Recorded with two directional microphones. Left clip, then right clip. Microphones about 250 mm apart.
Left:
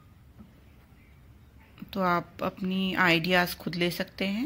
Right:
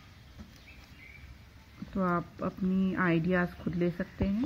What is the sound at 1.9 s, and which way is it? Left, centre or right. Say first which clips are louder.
Speech: left 5 dB; left.